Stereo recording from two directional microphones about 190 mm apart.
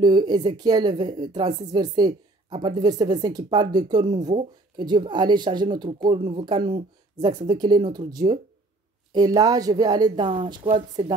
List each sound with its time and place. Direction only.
0.0 s a woman's voice: 25° right (ahead or behind)